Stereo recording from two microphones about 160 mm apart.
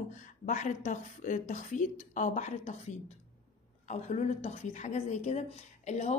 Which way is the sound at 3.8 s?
45° left (ahead or behind).